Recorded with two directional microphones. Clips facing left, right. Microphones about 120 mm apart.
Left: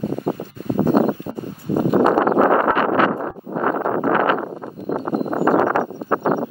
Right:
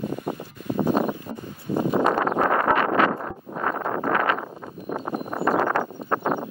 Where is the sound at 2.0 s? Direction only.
30° left (ahead or behind).